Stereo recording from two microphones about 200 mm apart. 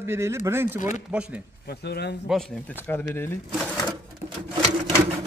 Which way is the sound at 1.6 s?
55° left (ahead or behind).